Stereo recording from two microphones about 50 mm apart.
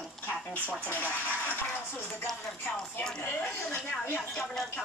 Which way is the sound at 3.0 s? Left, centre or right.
Centre.